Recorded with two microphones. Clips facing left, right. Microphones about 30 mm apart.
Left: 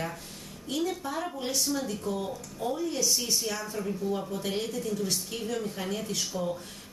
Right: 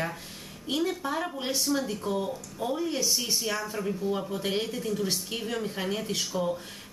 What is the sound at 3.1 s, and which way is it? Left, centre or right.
Speech, centre.